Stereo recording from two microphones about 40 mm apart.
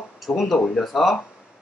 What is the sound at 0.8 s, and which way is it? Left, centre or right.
Speech, centre.